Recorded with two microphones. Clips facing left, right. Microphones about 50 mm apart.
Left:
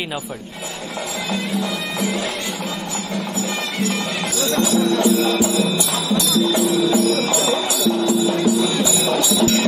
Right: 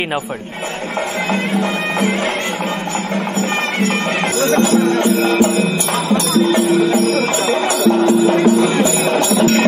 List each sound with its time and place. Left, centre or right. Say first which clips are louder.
1.3 s bagpipes: right 4 dB; right
4.4 s speech: right 4 dB; right